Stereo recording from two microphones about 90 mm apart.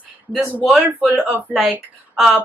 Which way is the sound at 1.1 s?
20° right (ahead or behind).